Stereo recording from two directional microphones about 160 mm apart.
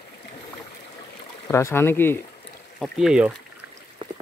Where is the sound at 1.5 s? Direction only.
15° left (ahead or behind).